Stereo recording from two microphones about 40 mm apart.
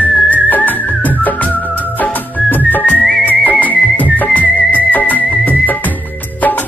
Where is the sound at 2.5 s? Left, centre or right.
Left.